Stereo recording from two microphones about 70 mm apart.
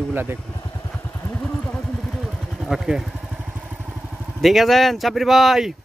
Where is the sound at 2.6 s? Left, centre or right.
Centre.